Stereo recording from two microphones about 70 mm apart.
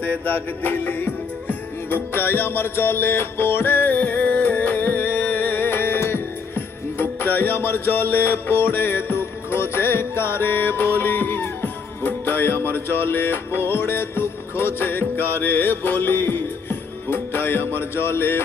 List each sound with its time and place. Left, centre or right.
0.0 s music: left